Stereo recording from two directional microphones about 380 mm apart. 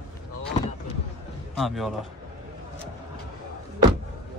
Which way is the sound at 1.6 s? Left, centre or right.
Centre.